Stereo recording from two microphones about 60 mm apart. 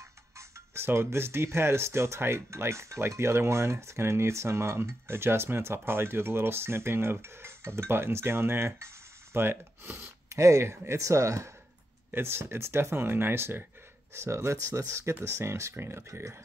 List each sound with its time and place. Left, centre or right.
0.4 s speech: right
10.3 s speech: right
12.1 s speech: right
14.1 s speech: right
16.1 s speech: right